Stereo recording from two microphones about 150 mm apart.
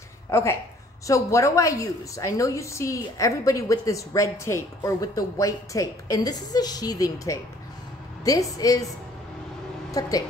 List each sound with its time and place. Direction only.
0.3 s a woman's voice: 15° left (ahead or behind)
9.8 s a woman's voice: 25° left (ahead or behind)